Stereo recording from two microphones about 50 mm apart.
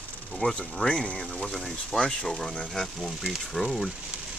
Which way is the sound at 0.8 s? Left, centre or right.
Centre.